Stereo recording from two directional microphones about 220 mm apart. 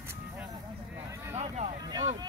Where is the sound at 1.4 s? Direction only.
30° right (ahead or behind).